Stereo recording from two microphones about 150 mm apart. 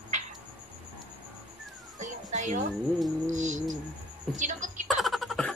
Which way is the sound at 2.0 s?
55° right (ahead or behind).